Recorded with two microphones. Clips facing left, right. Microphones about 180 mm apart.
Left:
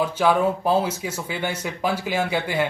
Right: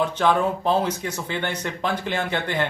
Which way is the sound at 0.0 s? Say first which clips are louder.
Left 1 dB; 10° left (ahead or behind).